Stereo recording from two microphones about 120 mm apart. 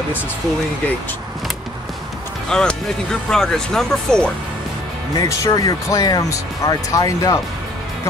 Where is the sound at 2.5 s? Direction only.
5° left (ahead or behind).